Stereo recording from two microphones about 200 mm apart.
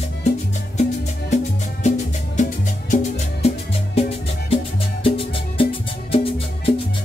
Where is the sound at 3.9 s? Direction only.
30° left (ahead or behind).